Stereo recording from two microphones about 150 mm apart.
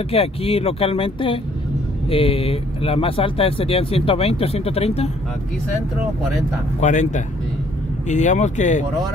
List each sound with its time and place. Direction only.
0.1 s speech: 40° left (ahead or behind)
6.8 s speech: 55° left (ahead or behind)